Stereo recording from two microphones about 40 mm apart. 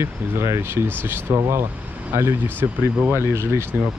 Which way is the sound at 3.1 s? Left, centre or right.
Right.